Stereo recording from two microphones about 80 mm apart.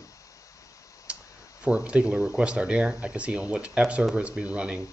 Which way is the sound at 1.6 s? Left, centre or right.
Centre.